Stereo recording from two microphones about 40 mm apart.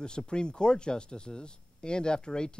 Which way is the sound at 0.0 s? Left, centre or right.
Left.